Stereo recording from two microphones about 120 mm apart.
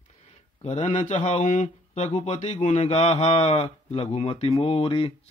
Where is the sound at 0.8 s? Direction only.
75° left (ahead or behind).